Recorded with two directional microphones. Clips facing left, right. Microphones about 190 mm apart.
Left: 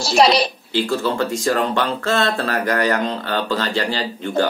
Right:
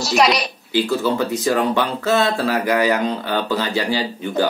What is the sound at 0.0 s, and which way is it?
Speech, 30° left (ahead or behind).